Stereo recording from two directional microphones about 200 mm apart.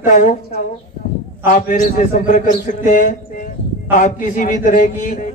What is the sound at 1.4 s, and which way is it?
A man's voice, 40° left (ahead or behind).